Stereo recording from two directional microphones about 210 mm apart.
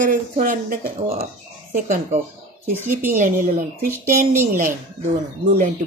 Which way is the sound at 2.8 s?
10° right (ahead or behind).